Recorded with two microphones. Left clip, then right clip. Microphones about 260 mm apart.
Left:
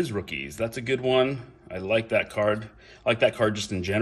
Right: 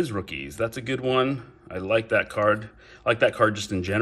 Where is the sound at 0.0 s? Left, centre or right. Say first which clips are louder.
Right 1 dB; right.